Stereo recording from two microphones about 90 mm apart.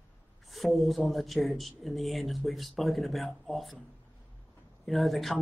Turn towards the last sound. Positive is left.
turn(degrees=0)  # may be behind; listen again after turning